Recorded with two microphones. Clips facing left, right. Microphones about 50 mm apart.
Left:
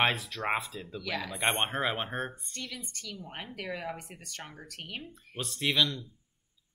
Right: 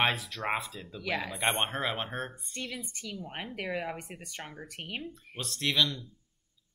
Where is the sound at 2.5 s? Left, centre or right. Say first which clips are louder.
Right 2 dB; centre.